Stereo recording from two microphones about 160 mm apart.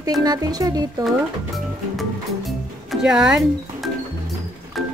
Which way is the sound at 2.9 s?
5° right (ahead or behind).